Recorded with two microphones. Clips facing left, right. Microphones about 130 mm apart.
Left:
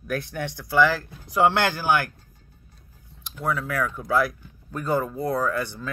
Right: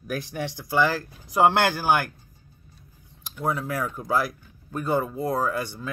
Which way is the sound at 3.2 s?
30° right (ahead or behind).